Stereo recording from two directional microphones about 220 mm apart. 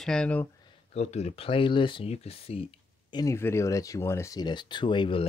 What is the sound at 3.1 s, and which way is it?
Speech, 15° left (ahead or behind).